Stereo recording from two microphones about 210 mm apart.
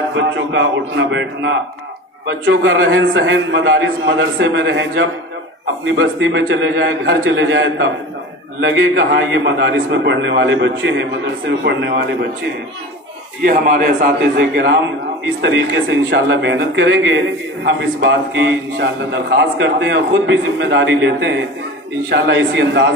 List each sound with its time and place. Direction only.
0.1 s a man's voice: 60° right (ahead or behind)
13.4 s a man's voice: 40° right (ahead or behind)
14.3 s a man's voice: 55° right (ahead or behind)